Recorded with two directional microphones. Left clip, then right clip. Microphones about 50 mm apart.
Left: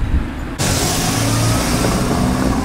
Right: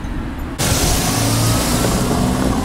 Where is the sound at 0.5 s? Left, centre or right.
Right.